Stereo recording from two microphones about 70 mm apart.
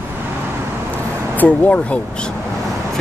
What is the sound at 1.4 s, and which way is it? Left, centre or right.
Speech, centre.